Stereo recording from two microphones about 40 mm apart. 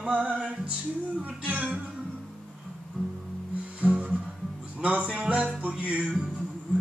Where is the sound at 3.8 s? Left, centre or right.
Right.